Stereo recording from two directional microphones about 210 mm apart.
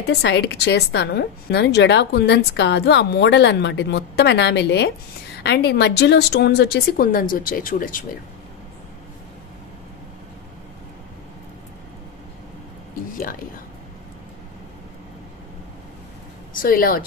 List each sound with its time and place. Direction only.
0.2 s a woman's voice: 55° left (ahead or behind)
16.6 s a woman's voice: 45° left (ahead or behind)